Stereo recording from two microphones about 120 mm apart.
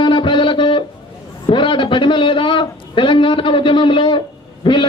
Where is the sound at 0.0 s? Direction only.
45° left (ahead or behind).